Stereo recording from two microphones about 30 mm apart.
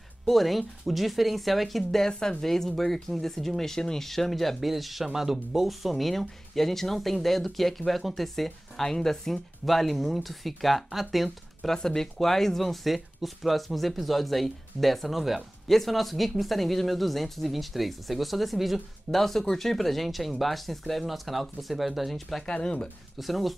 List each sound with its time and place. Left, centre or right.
0.3 s speech: centre
2.0 s speech: left
4.1 s speech: centre
8.5 s speech: centre
11.7 s speech: centre
22.5 s speech: left
23.1 s speech: centre